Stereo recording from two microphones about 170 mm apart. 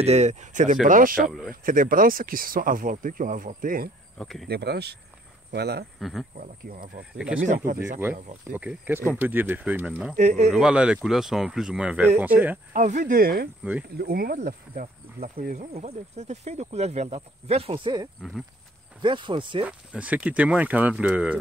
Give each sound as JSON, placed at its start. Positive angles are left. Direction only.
{"t": 0.0, "sound": "speech", "side_deg": -40}
{"t": 4.2, "sound": "speech", "side_deg": 0}
{"t": 4.5, "sound": "speech", "side_deg": -75}
{"t": 5.9, "sound": "speech", "side_deg": 0}
{"t": 6.3, "sound": "speech", "side_deg": -55}
{"t": 7.2, "sound": "speech", "side_deg": -5}
{"t": 7.4, "sound": "speech", "side_deg": -50}
{"t": 8.5, "sound": "speech", "side_deg": -10}
{"t": 10.1, "sound": "speech", "side_deg": -45}
{"t": 10.5, "sound": "speech", "side_deg": -5}
{"t": 12.7, "sound": "speech", "side_deg": -45}
{"t": 19.0, "sound": "speech", "side_deg": -30}
{"t": 19.6, "sound": "speech", "side_deg": -10}